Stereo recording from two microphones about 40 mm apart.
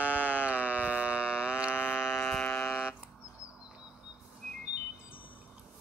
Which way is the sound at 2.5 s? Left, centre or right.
Left.